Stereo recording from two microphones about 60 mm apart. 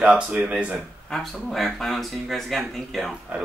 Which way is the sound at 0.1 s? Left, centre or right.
Right.